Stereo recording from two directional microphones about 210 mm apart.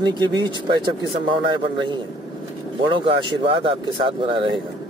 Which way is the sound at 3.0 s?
25° right (ahead or behind).